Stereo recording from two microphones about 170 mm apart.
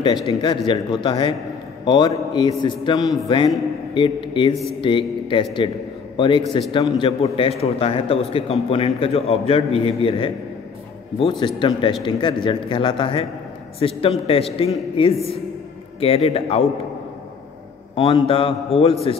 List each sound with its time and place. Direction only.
0.3 s a man's voice: 25° left (ahead or behind)
17.9 s a man's voice: 30° left (ahead or behind)